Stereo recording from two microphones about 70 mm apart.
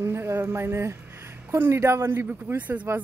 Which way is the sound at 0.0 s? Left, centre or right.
Right.